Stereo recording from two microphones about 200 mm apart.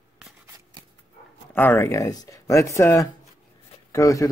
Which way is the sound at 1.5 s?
10° left (ahead or behind).